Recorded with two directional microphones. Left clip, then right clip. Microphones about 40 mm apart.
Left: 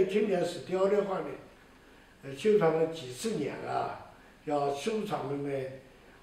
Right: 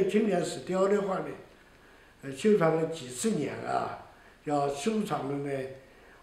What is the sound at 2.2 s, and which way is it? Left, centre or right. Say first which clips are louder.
A man's voice: right 1 dB; right.